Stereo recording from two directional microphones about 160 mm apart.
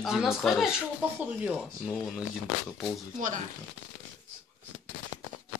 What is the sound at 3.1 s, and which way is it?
Speech, 55° right (ahead or behind).